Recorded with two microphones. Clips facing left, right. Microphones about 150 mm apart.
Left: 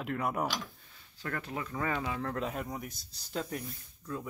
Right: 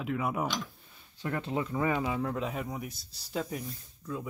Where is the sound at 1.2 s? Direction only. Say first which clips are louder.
Right 5 dB; 20° right (ahead or behind).